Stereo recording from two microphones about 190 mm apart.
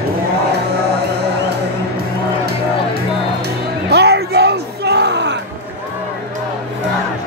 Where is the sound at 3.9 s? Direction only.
60° right (ahead or behind).